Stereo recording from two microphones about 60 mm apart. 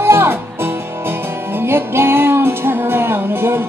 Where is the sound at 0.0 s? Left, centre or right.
Right.